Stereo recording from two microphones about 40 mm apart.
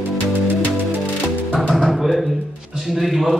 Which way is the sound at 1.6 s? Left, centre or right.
Centre.